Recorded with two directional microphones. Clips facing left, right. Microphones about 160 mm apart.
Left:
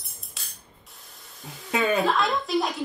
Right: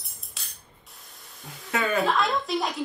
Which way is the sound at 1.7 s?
20° left (ahead or behind).